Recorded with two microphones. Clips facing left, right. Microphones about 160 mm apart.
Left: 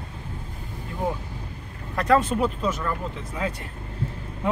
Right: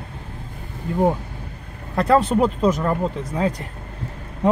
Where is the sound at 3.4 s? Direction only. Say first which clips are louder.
Right 7 dB; 35° right (ahead or behind).